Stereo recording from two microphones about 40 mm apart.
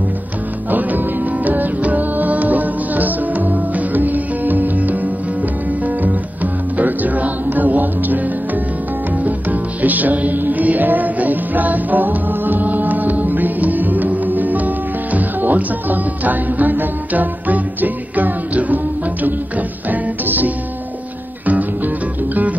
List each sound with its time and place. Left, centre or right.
0.7 s music: right
9.2 s music: right
19.9 s music: right